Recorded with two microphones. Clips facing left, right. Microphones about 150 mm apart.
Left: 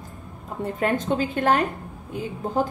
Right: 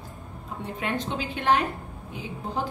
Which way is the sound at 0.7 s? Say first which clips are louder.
Left 7 dB; 45° left (ahead or behind).